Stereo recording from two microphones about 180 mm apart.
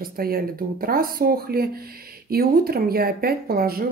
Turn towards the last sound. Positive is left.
turn(degrees=-55)  # may be behind; listen again after turning